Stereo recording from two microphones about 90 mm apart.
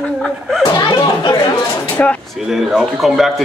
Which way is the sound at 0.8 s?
55° left (ahead or behind).